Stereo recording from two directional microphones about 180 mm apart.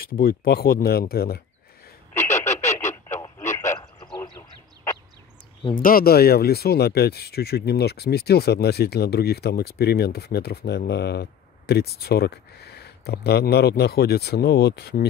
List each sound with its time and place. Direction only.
0.2 s speech: 55° left (ahead or behind)
2.1 s telephone: 15° left (ahead or behind)
2.6 s radio: 15° left (ahead or behind)
4.1 s a sound: 20° left (ahead or behind)
5.8 s speech: 55° left (ahead or behind)